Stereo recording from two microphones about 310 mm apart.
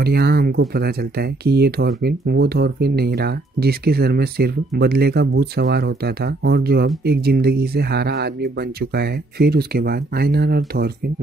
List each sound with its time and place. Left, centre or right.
0.0 s speech: right